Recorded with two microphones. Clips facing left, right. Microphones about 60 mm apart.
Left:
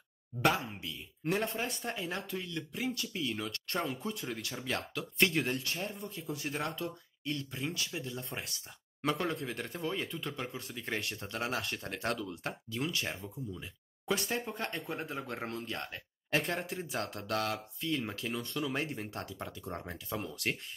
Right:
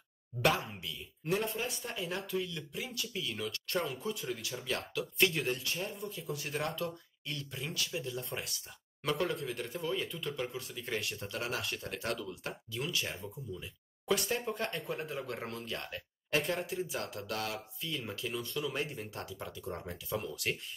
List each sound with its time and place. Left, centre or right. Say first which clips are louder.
1.2 s speech: left 1 dB; left; by 6.9 s centre
7.2 s speech: left 4 dB; left
14.1 s speech: right 1 dB; left
16.6 s speech: even; left